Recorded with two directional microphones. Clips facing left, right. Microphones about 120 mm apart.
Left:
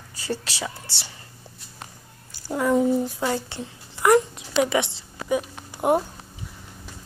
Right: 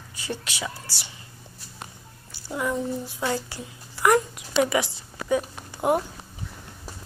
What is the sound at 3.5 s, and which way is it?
A woman's voice, 25° left (ahead or behind).